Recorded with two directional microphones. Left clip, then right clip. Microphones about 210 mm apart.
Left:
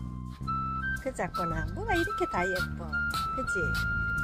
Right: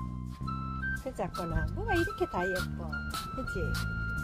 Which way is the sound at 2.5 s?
5° right (ahead or behind).